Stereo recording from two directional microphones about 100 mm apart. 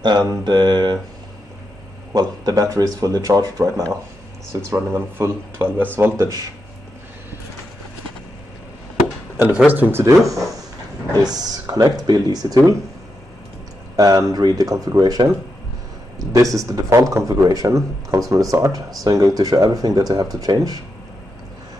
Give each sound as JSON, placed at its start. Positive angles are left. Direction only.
{"t": 0.0, "sound": "mantra", "side_deg": -45}
{"t": 2.1, "sound": "speech", "side_deg": -40}
{"t": 6.1, "sound": "speech", "side_deg": -35}
{"t": 9.4, "sound": "speech", "side_deg": -15}
{"t": 13.9, "sound": "speech", "side_deg": -40}